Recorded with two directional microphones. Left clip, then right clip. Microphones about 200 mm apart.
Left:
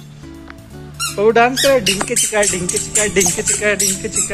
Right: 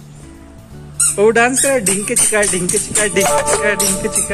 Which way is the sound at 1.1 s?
Centre (ahead or behind).